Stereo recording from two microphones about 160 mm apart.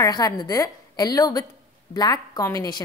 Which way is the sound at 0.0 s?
25° left (ahead or behind).